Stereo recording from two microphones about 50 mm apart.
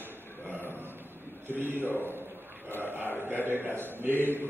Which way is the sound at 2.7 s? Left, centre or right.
Left.